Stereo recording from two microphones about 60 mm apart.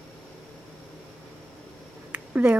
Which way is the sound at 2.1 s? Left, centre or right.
Right.